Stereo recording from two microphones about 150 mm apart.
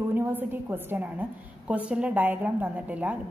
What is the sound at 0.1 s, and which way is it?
A woman's voice, 15° right (ahead or behind).